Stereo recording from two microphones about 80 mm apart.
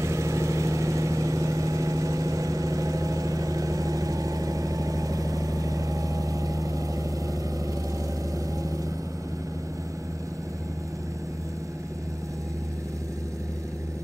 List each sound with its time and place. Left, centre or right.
0.0 s vehicle: right